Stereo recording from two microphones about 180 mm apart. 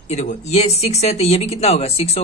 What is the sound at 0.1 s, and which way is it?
Speech, 40° left (ahead or behind).